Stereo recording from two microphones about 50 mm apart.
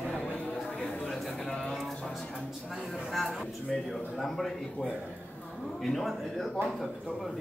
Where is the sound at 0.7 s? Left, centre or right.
Centre.